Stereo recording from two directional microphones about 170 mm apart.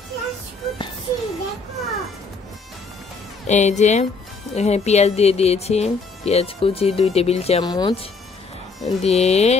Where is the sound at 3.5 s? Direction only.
45° left (ahead or behind).